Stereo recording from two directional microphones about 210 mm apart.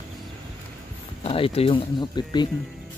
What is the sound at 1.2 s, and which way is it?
Speech, 25° left (ahead or behind).